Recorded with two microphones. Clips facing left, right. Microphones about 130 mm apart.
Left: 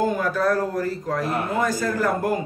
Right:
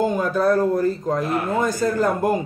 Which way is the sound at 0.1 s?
20° right (ahead or behind).